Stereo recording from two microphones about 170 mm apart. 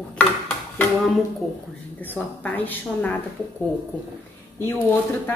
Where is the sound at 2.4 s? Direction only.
10° left (ahead or behind).